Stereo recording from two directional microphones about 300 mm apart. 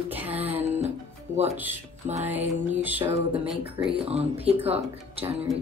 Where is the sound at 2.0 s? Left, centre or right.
Right.